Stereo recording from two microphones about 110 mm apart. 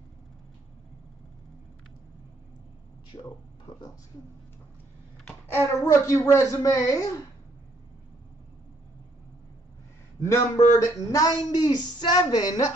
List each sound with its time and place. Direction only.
5.7 s a woman's voice: 30° left (ahead or behind)
10.2 s a woman's voice: 25° left (ahead or behind)